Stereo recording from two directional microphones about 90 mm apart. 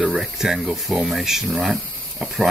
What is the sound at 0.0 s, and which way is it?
Speech, 5° right (ahead or behind).